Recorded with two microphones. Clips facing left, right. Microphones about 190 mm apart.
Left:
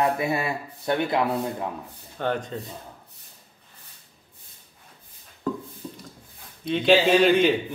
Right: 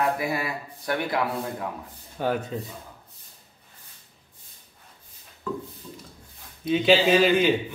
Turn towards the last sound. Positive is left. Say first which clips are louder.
# left 1 dB
turn(degrees=0)  # may be behind; listen again after turning